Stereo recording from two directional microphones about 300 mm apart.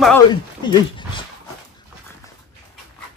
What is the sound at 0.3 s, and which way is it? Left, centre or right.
Speech, centre.